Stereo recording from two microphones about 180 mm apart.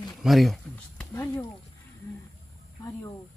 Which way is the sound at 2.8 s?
15° left (ahead or behind).